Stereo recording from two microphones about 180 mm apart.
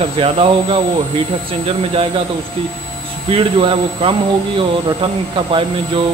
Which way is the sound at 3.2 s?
30° right (ahead or behind).